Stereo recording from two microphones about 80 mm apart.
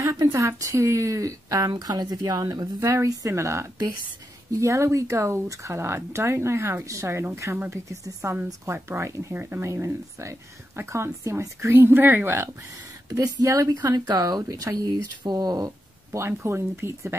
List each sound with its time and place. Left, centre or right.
0.0 s speech: right
1.7 s speech: right
8.6 s speech: right
13.1 s speech: right
16.1 s speech: right